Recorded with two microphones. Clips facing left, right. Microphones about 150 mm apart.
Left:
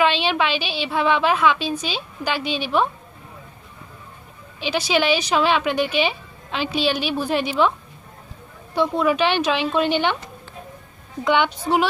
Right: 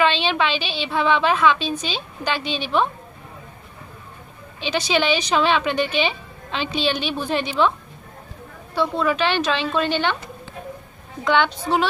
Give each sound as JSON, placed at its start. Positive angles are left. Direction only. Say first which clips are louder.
{"t": 0.0, "sound": "a woman's voice", "louder": "even", "side_deg": 10}
{"t": 4.6, "sound": "a woman's voice", "louder": "even", "side_deg": 10}
{"t": 8.7, "sound": "a woman's voice", "louder": "left 2 dB", "side_deg": 15}
{"t": 11.2, "sound": "a woman's voice", "louder": "even", "side_deg": 10}